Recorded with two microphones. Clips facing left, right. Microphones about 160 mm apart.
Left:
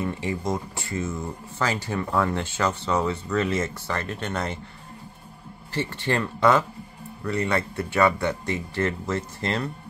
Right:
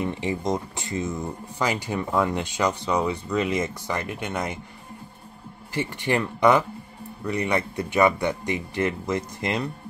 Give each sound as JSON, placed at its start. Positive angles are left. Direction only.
{"t": 0.0, "sound": "speech", "side_deg": -20}
{"t": 5.8, "sound": "speech", "side_deg": -15}